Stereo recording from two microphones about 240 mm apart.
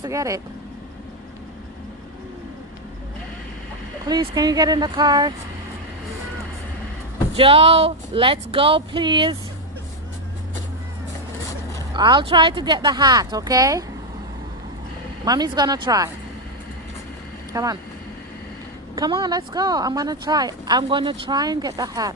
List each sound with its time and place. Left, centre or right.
0.0 s speech: centre
4.0 s speech: centre
7.3 s speech: right
11.9 s speech: centre
15.2 s speech: centre
17.5 s speech: centre
18.9 s speech: centre